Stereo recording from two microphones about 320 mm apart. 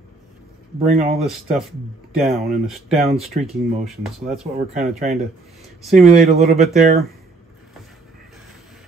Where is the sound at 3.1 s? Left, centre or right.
Right.